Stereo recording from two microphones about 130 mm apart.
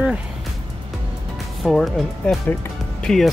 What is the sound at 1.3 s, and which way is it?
Speech, centre (ahead or behind).